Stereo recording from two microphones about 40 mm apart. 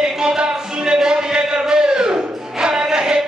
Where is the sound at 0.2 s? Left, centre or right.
Centre.